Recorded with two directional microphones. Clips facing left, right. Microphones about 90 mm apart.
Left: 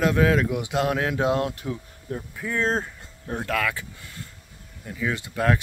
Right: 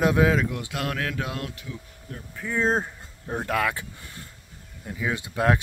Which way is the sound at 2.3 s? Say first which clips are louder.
Right 1 dB; 5° right (ahead or behind).